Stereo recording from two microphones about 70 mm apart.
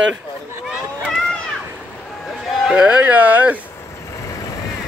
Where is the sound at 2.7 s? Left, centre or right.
Centre.